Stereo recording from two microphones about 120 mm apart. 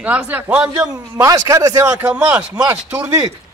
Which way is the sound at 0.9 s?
30° right (ahead or behind).